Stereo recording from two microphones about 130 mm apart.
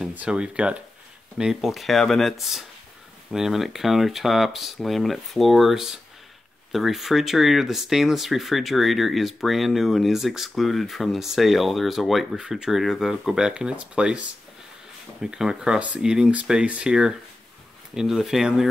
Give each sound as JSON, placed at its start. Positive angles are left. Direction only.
{"t": 0.0, "sound": "speech", "side_deg": -10}
{"t": 15.2, "sound": "speech", "side_deg": -5}